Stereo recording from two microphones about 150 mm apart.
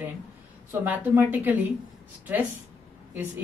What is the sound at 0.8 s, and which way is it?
Speech, 15° right (ahead or behind).